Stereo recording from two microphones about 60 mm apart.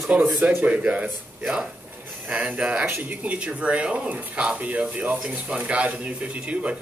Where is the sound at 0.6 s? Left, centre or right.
Right.